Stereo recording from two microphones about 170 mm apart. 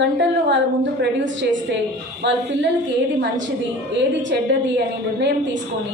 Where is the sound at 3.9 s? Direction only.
90° right.